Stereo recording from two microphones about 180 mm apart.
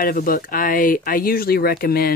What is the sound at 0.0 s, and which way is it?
Speech, 50° left (ahead or behind).